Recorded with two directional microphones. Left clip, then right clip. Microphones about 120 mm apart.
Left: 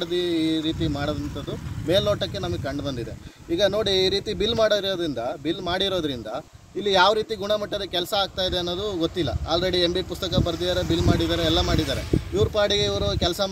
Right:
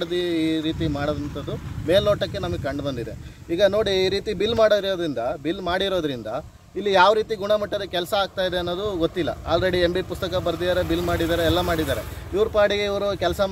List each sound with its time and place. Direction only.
0.0 s mantra: 20° right (ahead or behind)
3.5 s speech: 15° right (ahead or behind)